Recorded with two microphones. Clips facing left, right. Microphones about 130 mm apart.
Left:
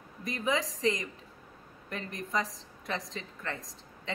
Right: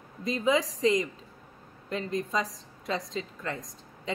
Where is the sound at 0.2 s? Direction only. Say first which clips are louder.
Right 5 dB; 20° right (ahead or behind).